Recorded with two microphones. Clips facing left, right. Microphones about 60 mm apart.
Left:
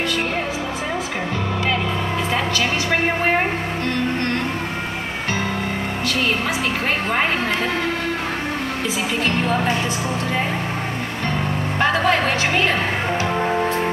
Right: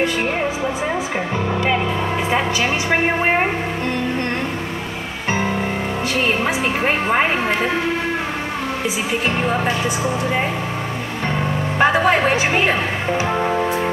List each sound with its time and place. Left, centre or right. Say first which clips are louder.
9.3 s speech: even; centre
11.8 s a woman's voice: right 3 dB; centre